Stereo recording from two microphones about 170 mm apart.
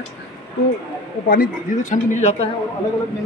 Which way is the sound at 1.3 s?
50° left (ahead or behind).